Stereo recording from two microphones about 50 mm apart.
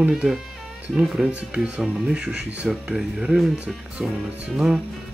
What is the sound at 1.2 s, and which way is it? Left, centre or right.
Speech, right.